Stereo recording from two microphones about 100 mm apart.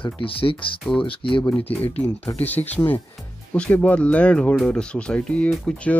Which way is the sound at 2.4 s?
20° left (ahead or behind).